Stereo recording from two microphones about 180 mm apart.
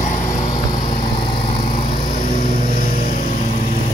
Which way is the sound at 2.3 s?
50° left (ahead or behind).